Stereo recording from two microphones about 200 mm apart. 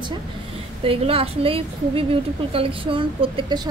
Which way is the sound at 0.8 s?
30° right (ahead or behind).